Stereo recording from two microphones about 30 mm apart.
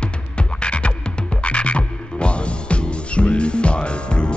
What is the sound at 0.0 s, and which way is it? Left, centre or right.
Frog, left.